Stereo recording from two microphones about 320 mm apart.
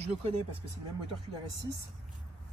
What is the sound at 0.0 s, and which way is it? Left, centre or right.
Speech, centre.